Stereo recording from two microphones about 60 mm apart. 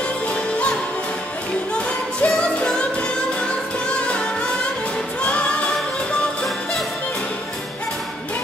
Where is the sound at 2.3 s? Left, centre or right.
Centre.